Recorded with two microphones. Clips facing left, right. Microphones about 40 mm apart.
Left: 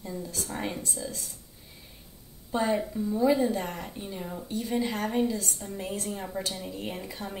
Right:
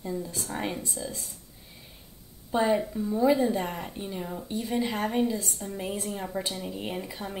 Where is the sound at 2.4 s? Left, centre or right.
Centre.